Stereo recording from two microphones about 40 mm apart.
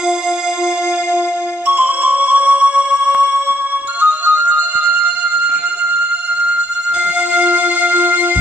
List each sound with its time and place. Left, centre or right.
1.7 s music: right
7.3 s music: right